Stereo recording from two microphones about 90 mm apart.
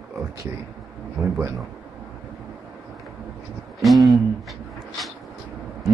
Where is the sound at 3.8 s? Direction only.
Centre (ahead or behind).